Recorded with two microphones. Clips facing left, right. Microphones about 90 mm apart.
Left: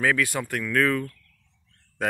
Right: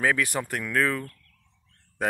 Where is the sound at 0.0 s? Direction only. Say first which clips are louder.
Left 1 dB; 25° right (ahead or behind).